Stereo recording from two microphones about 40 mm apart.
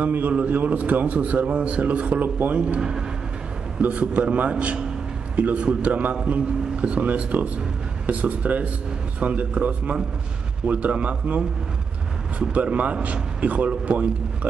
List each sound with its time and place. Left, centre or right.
0.0 s a man's voice: right
0.3 s a man's voice: right
2.8 s speech: centre
4.1 s a man's voice: right